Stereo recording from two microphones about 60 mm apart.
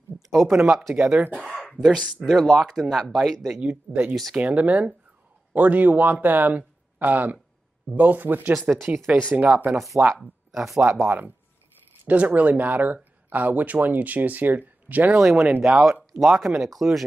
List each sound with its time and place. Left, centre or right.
0.3 s speech: centre
1.7 s a sound: centre
2.2 s speech: centre
3.6 s speech: right
4.1 s speech: centre
4.4 s speech: right
9.1 s speech: centre
10.2 s speech: centre
11.1 s speech: right
15.1 s speech: centre